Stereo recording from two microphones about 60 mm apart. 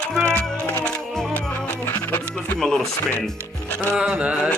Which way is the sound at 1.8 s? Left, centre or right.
Left.